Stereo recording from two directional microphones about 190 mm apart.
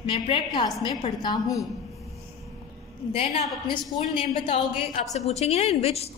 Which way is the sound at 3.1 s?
30° left (ahead or behind).